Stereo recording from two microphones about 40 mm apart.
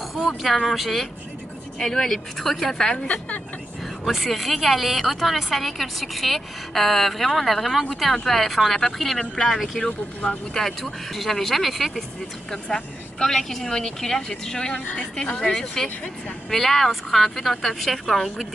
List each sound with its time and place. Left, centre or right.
0.7 s a woman's voice: centre
1.8 s speech: centre
4.0 s a woman's voice: centre
12.4 s a woman's voice: centre